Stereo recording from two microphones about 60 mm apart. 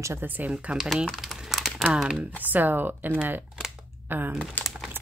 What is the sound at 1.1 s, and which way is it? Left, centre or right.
Typing, centre.